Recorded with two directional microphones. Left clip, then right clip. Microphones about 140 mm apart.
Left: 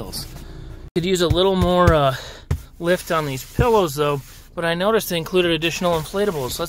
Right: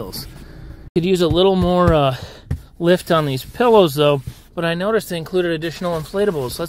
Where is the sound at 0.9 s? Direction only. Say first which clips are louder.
Right 3 dB; 15° right (ahead or behind).